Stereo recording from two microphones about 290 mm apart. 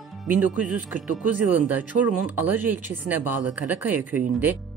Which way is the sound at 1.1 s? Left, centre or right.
Right.